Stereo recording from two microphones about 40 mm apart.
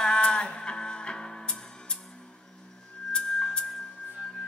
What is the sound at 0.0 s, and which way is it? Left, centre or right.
Music, left.